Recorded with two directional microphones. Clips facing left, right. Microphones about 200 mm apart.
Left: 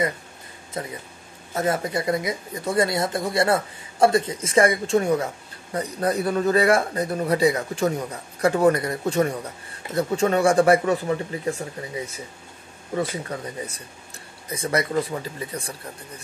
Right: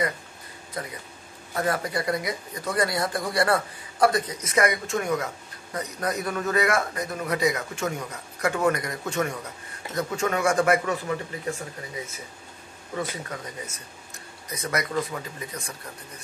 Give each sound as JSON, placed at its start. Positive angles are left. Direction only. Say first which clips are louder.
{"t": 0.8, "sound": "speech", "louder": "left 3 dB", "side_deg": 25}
{"t": 12.9, "sound": "speech", "louder": "left 5 dB", "side_deg": 30}